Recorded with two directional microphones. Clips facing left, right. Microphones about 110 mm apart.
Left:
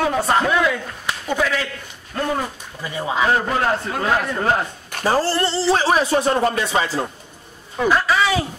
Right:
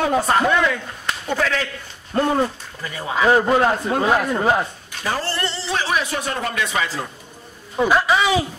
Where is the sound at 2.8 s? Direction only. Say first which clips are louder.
Even; 20° left (ahead or behind).